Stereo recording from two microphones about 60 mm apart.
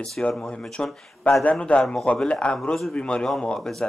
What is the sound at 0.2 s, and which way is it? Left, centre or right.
A man's voice, centre.